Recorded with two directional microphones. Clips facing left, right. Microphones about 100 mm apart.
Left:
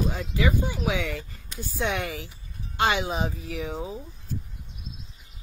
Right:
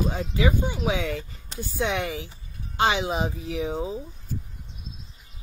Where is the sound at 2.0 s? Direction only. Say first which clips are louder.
Right 2 dB; 15° right (ahead or behind).